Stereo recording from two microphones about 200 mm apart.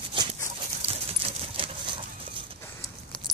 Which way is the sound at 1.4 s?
25° right (ahead or behind).